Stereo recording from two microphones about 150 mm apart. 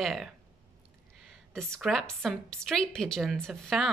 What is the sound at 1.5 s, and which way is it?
A woman's voice, 5° left (ahead or behind).